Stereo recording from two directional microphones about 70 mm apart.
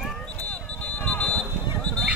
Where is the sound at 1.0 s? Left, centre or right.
Centre.